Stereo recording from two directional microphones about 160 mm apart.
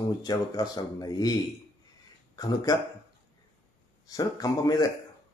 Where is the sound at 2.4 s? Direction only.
25° left (ahead or behind).